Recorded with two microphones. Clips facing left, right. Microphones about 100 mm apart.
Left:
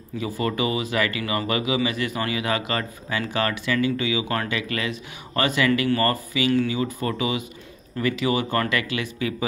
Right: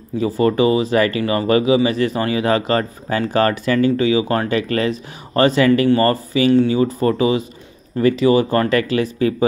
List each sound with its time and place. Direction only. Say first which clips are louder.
0.2 s speech: right 9 dB; 35° right (ahead or behind)